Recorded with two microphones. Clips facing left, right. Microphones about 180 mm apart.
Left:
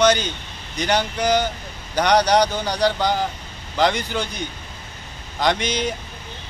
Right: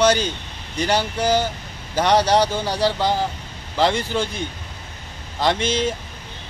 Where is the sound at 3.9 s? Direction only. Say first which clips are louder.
Right 2 dB; 30° right (ahead or behind).